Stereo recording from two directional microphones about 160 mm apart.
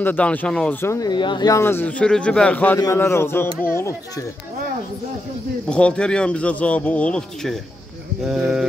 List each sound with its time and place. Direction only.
0.0 s speech: 10° left (ahead or behind)
5.7 s speech: 5° left (ahead or behind)